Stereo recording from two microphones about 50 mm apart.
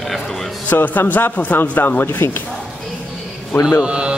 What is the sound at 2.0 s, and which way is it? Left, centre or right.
Speech, left.